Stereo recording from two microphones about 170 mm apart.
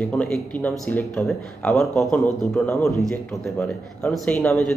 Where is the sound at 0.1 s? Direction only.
5° left (ahead or behind).